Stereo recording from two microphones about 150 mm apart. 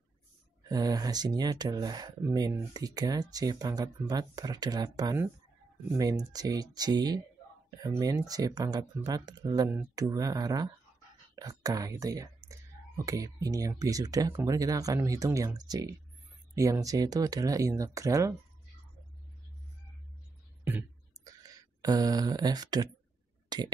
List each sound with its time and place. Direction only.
0.7 s speech: 25° right (ahead or behind)
6.3 s speech: 25° right (ahead or behind)
21.2 s a sound: 25° right (ahead or behind)
23.5 s speech: 30° right (ahead or behind)